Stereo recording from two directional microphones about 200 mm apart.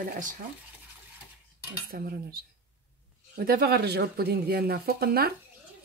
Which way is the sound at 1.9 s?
50° right (ahead or behind).